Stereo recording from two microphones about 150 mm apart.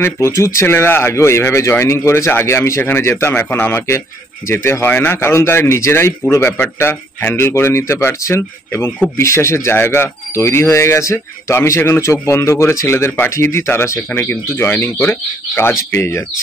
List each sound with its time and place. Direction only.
0.0 s speech: 20° left (ahead or behind)